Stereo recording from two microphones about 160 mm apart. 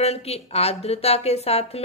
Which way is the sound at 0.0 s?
40° left (ahead or behind).